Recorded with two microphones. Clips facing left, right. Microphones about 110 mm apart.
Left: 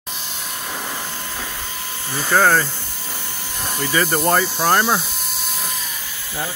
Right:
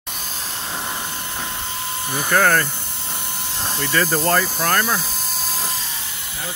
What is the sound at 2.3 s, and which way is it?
Speech, 10° left (ahead or behind).